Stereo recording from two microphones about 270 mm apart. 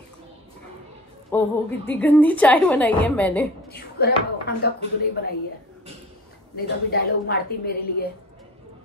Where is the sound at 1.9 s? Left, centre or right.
Centre.